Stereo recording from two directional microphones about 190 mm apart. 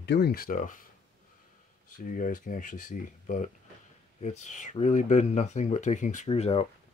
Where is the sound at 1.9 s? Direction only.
45° left (ahead or behind).